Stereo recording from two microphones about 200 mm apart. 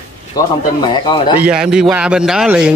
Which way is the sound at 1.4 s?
5° right (ahead or behind).